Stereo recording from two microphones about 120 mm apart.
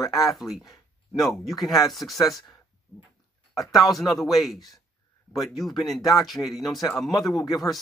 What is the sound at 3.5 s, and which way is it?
Speech, 30° left (ahead or behind).